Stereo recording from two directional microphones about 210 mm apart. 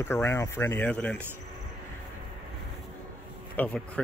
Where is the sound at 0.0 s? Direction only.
10° left (ahead or behind).